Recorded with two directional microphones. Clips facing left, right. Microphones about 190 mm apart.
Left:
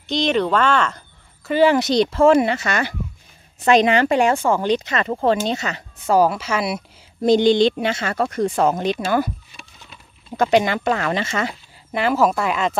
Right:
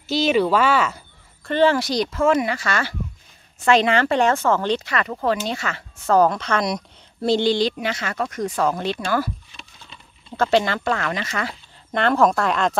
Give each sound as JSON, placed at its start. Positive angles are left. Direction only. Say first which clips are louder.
{"t": 0.0, "sound": "speech", "louder": "right 1 dB", "side_deg": -5}
{"t": 1.4, "sound": "speech", "louder": "left 2 dB", "side_deg": 10}
{"t": 1.8, "sound": "speech", "louder": "left 5 dB", "side_deg": 25}
{"t": 7.2, "sound": "speech", "louder": "left 5 dB", "side_deg": 20}
{"t": 11.9, "sound": "speech", "louder": "even", "side_deg": 5}